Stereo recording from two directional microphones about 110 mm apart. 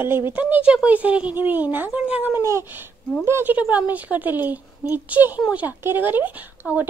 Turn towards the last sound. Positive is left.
turn(degrees=-15)  # may be behind; listen again after turning